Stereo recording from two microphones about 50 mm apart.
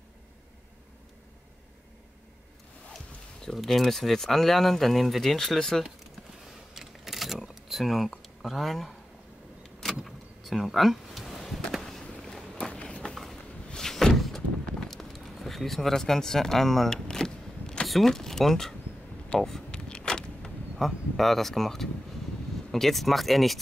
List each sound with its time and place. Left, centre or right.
3.5 s speech: centre
6.7 s a sound: centre
8.1 s speech: centre
9.8 s vehicle: centre
12.2 s a sound: centre
12.7 s run: left
13.1 s a sound: centre
13.7 s door: centre
14.7 s a sound: centre
17.8 s speech: centre
19.3 s speech: left
19.7 s vehicle: centre
20.7 s speech: centre